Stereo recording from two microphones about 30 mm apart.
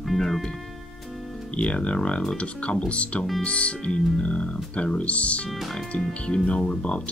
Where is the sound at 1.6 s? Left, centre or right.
Left.